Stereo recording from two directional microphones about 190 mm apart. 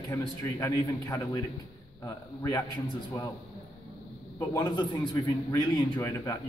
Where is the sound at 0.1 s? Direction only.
15° left (ahead or behind).